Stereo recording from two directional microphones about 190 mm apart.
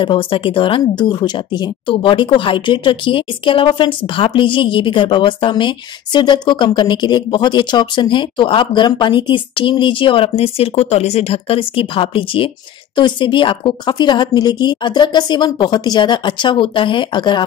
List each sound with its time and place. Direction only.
0.0 s speech: 25° left (ahead or behind)